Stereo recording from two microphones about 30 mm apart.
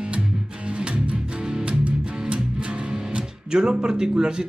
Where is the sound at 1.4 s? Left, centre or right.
Right.